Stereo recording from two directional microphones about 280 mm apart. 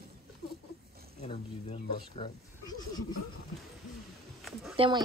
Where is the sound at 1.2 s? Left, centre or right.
Left.